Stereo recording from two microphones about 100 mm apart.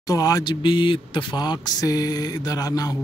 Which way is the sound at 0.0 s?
35° left (ahead or behind).